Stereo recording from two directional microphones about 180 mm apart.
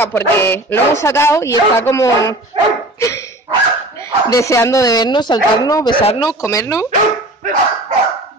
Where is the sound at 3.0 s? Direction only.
15° left (ahead or behind).